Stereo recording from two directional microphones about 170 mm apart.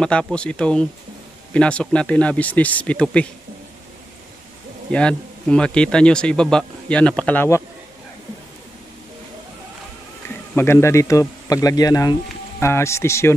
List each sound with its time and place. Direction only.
0.0 s a man's voice: 5° left (ahead or behind)
4.9 s a man's voice: 5° left (ahead or behind)
10.5 s a man's voice: 15° left (ahead or behind)